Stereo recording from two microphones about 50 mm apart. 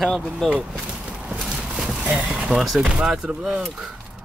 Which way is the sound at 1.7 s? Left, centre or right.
Centre.